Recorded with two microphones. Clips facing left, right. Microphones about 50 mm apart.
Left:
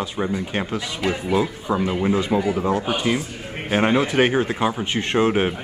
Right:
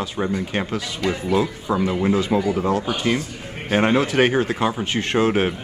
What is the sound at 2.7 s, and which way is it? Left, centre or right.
Speech, left.